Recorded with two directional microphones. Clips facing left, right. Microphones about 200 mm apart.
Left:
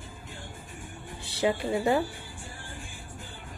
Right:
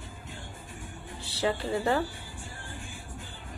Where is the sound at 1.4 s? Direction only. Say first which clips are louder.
Left 2 dB; 15° left (ahead or behind).